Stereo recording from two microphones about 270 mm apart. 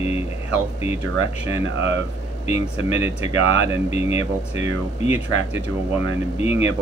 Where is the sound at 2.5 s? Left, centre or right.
Left.